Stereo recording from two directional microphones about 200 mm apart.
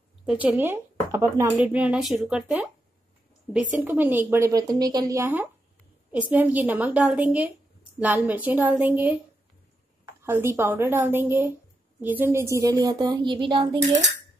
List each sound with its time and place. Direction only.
0.2 s speech: 5° right (ahead or behind)
3.8 s speech: 10° right (ahead or behind)
10.2 s speech: 10° right (ahead or behind)